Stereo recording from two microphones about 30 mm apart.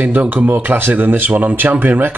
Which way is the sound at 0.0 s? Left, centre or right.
Right.